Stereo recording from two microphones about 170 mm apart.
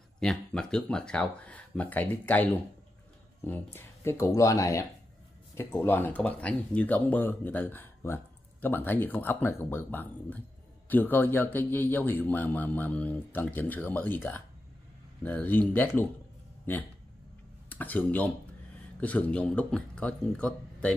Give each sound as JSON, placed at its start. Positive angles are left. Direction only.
{"t": 0.2, "sound": "speech", "side_deg": 5}
{"t": 17.6, "sound": "speech", "side_deg": 10}